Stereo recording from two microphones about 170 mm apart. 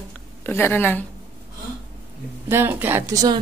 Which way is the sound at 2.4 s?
15° right (ahead or behind).